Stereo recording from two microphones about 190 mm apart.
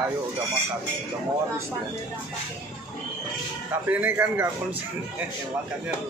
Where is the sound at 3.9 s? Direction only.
10° right (ahead or behind).